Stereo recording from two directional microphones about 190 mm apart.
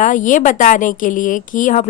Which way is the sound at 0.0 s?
40° left (ahead or behind).